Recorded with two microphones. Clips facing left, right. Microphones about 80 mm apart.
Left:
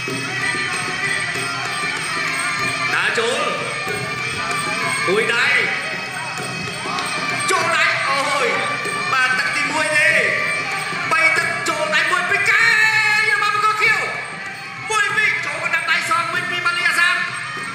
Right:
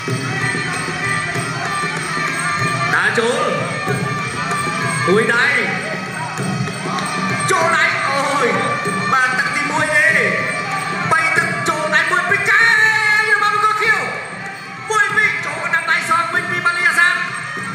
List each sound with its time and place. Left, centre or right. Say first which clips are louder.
2.9 s music: right 4 dB; right
5.0 s speech: right 4 dB; right
7.4 s music: right 3 dB; right
14.9 s a sound: right 3 dB; right
16.6 s music: right 3 dB; right